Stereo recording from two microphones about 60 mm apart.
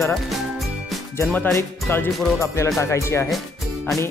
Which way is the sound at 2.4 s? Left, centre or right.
Left.